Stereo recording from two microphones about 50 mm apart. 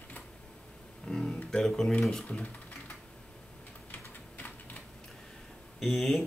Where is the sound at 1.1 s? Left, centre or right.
Centre.